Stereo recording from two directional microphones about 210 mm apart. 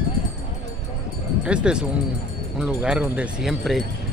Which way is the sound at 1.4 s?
5° right (ahead or behind).